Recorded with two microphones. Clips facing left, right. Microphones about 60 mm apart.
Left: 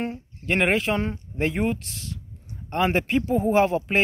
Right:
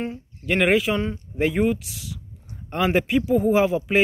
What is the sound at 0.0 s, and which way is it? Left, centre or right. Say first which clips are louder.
Speech: even; centre.